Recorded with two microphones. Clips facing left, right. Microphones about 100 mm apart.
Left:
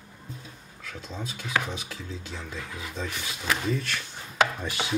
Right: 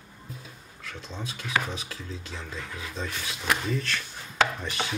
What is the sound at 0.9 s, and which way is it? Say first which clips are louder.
Speech: left 1 dB; centre (ahead or behind).